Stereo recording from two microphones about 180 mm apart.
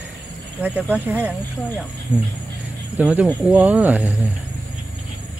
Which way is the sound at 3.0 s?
10° right (ahead or behind).